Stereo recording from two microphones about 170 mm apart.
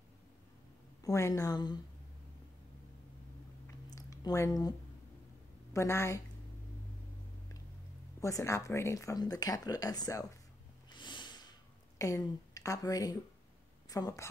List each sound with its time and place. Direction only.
1.0 s speech: 20° left (ahead or behind)
3.6 s a sound: 20° left (ahead or behind)
5.7 s a woman's voice: 15° left (ahead or behind)
8.2 s speech: 20° left (ahead or behind)
10.9 s snort: 25° left (ahead or behind)
12.0 s a woman's voice: 20° left (ahead or behind)